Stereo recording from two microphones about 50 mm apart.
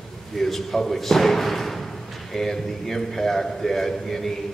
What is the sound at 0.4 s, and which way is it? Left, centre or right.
A man's voice, centre.